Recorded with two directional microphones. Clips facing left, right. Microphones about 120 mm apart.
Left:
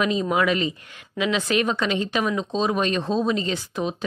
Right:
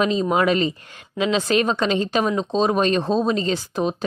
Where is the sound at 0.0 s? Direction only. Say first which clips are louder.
Right 3 dB; 30° right (ahead or behind).